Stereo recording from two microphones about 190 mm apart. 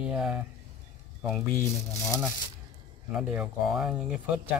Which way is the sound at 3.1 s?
5° right (ahead or behind).